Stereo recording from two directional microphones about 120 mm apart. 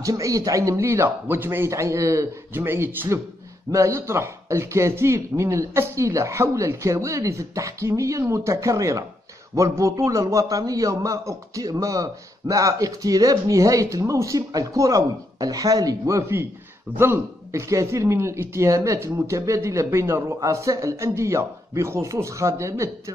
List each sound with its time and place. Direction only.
0.0 s a man's voice: 30° right (ahead or behind)